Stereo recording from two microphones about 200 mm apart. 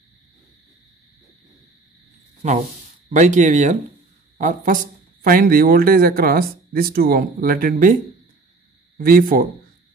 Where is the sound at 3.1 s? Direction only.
35° right (ahead or behind).